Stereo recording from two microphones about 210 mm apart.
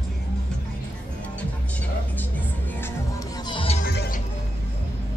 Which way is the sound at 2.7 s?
15° left (ahead or behind).